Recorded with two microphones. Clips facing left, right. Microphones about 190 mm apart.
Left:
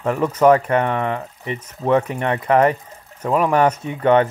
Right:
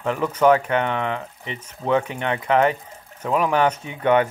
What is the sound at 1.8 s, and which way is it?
Speech, 35° left (ahead or behind).